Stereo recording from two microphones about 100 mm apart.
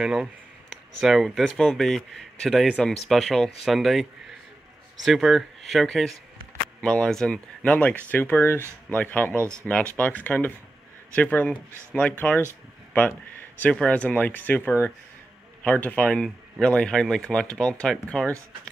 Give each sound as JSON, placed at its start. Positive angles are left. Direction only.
{"t": 0.0, "sound": "speech", "side_deg": -5}
{"t": 9.4, "sound": "speech", "side_deg": -25}
{"t": 9.7, "sound": "speech", "side_deg": 15}
{"t": 13.6, "sound": "speech", "side_deg": 10}